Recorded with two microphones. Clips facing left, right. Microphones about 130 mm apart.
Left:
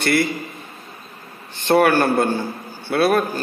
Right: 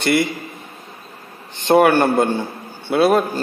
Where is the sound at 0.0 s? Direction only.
20° right (ahead or behind).